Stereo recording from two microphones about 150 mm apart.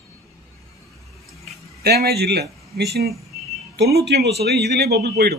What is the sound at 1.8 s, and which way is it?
Speech, 90° right.